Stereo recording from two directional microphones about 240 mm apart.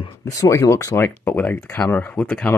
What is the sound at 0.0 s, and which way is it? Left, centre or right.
Speech, centre.